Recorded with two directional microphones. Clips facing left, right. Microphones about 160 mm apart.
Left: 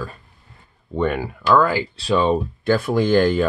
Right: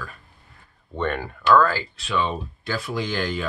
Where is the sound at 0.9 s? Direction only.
10° left (ahead or behind).